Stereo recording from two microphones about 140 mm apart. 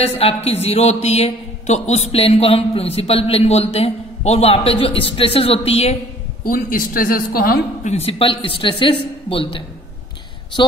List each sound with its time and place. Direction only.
0.0 s a man's voice: 45° left (ahead or behind)
6.4 s a woman's voice: 85° left
7.9 s a man's voice: 45° left (ahead or behind)